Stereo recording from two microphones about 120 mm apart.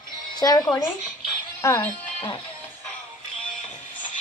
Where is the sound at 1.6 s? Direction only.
15° left (ahead or behind).